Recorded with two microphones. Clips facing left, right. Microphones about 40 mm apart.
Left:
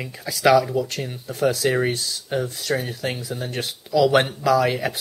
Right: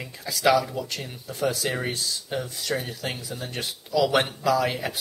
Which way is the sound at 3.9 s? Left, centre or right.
Centre.